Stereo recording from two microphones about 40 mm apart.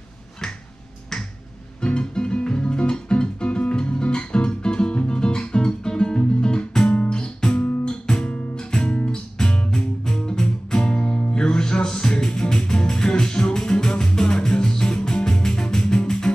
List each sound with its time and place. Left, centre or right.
1.1 s finger snapping: centre
1.8 s music: left